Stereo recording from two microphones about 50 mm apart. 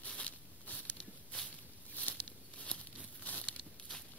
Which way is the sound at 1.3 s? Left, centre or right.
Left.